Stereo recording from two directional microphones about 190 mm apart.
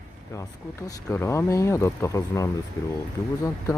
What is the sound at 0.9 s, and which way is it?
Speech, 15° left (ahead or behind).